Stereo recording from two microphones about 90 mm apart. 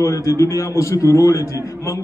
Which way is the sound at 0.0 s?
35° left (ahead or behind).